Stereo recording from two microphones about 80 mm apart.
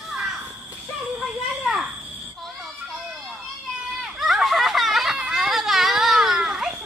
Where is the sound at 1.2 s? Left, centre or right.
Centre.